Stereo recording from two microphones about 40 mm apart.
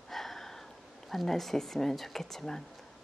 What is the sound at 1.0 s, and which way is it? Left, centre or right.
Speech, centre.